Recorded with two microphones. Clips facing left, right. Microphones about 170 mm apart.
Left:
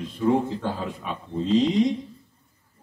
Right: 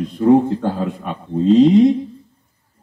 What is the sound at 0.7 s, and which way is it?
A man's voice, 60° right (ahead or behind).